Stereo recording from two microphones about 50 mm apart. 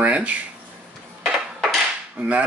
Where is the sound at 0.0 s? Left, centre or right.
Right.